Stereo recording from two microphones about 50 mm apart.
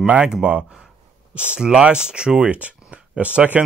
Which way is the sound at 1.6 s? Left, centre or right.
Centre.